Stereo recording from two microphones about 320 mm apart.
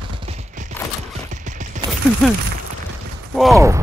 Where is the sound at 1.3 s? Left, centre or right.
Right.